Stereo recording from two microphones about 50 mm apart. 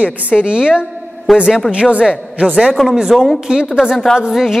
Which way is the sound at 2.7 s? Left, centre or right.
Centre.